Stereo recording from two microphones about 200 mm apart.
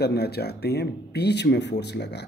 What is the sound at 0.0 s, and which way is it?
Speech, 55° left (ahead or behind).